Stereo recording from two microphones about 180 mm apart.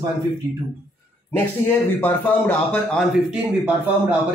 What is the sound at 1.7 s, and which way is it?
A man's voice, 10° left (ahead or behind).